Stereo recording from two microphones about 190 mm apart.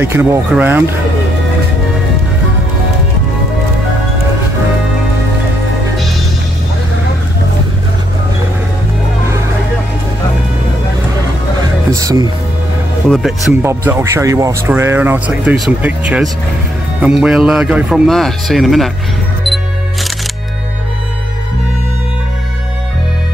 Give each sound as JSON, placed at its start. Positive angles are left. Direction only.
{"t": 0.0, "sound": "speech", "side_deg": -10}
{"t": 12.0, "sound": "speech", "side_deg": -20}
{"t": 13.1, "sound": "speech", "side_deg": 0}
{"t": 13.6, "sound": "speech", "side_deg": -15}
{"t": 19.4, "sound": "music", "side_deg": 0}